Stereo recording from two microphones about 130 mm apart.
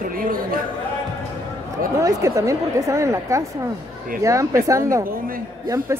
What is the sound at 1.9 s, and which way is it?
Speech, 25° right (ahead or behind).